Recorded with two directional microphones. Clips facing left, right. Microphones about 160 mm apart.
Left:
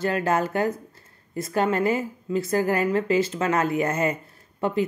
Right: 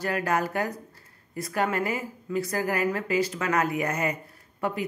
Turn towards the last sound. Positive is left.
turn(degrees=25)  # may be behind; listen again after turning